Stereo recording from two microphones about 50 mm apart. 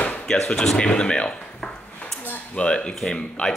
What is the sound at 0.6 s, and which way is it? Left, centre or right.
Speech, centre.